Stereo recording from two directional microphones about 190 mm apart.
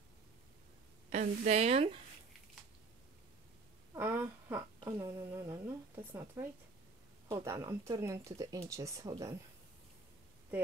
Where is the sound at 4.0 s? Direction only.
10° right (ahead or behind).